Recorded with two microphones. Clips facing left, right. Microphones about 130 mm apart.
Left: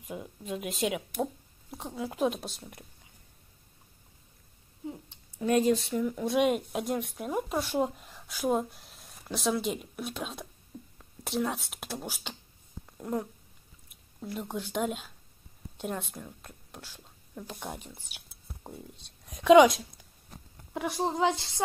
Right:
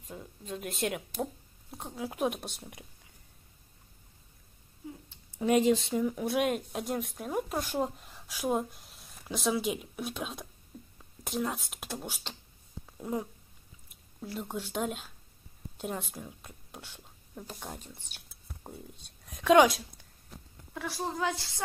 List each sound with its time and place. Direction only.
0.1 s speech: 10° left (ahead or behind)
5.9 s speech: 15° right (ahead or behind)
6.2 s speech: centre (ahead or behind)
12.8 s a sound: 5° right (ahead or behind)
13.8 s a woman's voice: centre (ahead or behind)
20.7 s a woman's voice: 20° left (ahead or behind)